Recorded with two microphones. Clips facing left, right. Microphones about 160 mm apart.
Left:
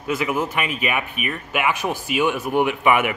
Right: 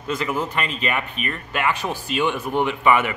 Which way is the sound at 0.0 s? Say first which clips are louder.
Left 2 dB; 10° left (ahead or behind).